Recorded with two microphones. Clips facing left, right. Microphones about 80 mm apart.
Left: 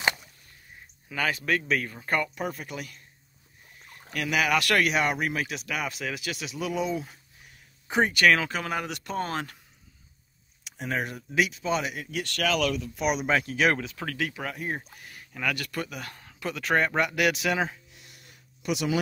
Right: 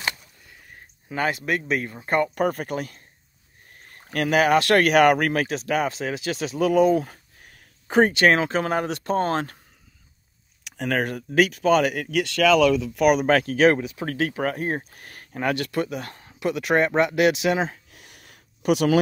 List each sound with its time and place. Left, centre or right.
1.0 s speech: right
2.3 s speech: right
4.8 s speech: right
8.1 s speech: right
10.6 s speech: right
15.4 s speech: right
17.9 s a sound: right